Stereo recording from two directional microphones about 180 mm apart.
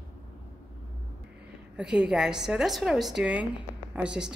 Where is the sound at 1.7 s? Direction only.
5° right (ahead or behind).